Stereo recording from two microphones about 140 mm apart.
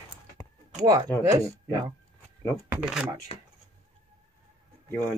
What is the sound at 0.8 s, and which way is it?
Speech, 25° right (ahead or behind).